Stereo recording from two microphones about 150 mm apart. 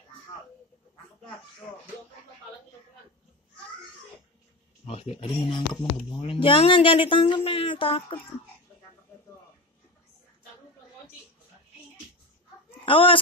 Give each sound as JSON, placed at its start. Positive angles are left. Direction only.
{"t": 4.8, "sound": "speech", "side_deg": 40}
{"t": 12.8, "sound": "speech", "side_deg": 35}